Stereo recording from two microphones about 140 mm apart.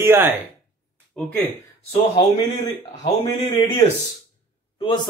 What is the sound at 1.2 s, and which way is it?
Speech, 5° left (ahead or behind).